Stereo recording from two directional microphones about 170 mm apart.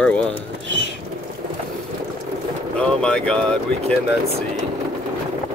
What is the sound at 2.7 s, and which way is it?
Speech, 5° left (ahead or behind).